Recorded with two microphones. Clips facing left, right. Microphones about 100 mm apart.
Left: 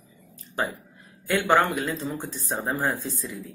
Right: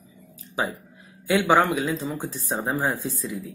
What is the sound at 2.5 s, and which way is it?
Speech, centre (ahead or behind).